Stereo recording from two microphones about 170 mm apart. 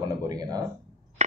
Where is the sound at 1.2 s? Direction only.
45° right (ahead or behind).